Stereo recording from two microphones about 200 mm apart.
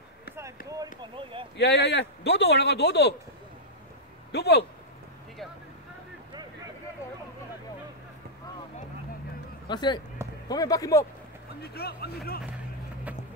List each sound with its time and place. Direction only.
0.7 s speech: 20° right (ahead or behind)
1.6 s speech: 55° left (ahead or behind)
4.3 s speech: 55° left (ahead or behind)
9.7 s speech: 20° left (ahead or behind)
11.6 s speech: 55° left (ahead or behind)